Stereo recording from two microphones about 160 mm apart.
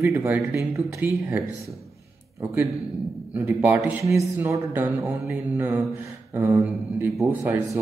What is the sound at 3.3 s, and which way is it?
A man's voice, 15° right (ahead or behind).